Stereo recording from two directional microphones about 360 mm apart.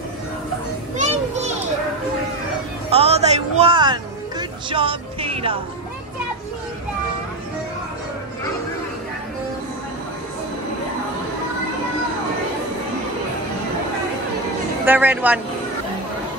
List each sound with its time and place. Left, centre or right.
0.9 s children playing: centre
2.9 s music: centre
14.9 s speech: centre